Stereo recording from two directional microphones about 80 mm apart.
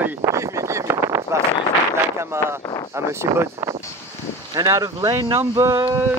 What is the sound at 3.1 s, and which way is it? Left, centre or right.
Speech, right.